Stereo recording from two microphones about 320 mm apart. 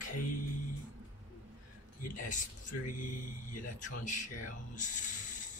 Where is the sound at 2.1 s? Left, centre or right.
Left.